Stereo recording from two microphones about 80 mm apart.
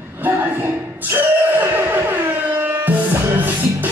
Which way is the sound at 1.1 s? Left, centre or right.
Right.